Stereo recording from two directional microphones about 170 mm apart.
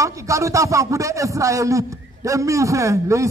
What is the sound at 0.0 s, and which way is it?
Speech, 20° right (ahead or behind).